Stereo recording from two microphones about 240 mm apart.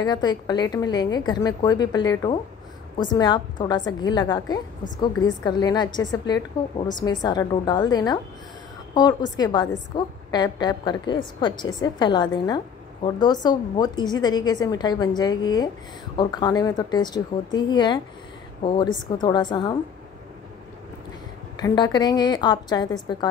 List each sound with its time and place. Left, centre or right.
0.0 s a woman's voice: centre
21.5 s a woman's voice: centre